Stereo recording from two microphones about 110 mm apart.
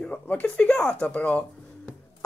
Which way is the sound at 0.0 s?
15° left (ahead or behind).